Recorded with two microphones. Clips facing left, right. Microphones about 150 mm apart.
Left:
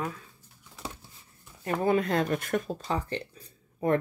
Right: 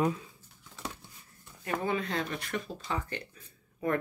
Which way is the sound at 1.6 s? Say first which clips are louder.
Left 6 dB; 45° left (ahead or behind).